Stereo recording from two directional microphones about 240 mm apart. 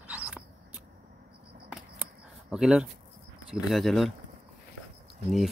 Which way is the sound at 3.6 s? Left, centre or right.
Centre.